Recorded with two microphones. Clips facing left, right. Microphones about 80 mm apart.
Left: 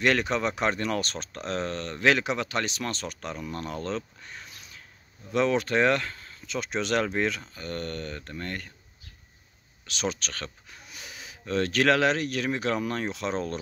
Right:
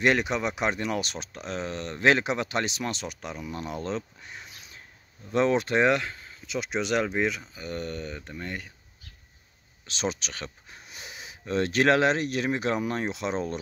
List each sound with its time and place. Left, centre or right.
0.0 s speech: centre
5.3 s speech: right; by 8.7 s centre
9.8 s speech: right
10.7 s speech: right